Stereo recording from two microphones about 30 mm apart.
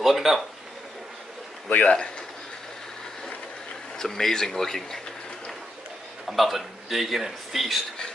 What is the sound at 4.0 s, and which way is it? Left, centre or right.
Speech, centre.